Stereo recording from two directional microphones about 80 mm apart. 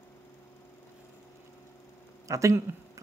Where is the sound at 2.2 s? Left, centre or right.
Right.